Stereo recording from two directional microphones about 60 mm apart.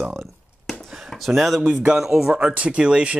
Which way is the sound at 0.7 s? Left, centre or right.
Centre.